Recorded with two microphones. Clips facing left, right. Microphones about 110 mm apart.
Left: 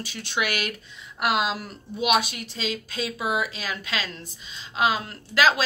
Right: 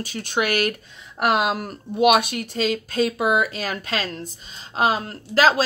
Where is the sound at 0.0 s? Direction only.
45° right (ahead or behind).